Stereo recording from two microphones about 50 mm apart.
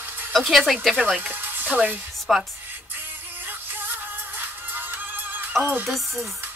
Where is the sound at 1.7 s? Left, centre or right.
Right.